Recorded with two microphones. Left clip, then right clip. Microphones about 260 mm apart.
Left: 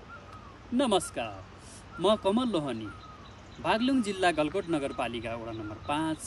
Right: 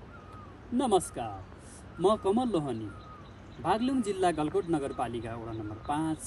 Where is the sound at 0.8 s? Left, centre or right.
Centre.